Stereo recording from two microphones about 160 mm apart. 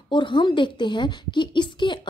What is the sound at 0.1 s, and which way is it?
A woman's voice, 30° left (ahead or behind).